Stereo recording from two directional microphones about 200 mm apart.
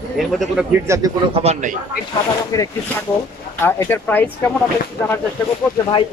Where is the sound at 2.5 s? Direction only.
20° left (ahead or behind).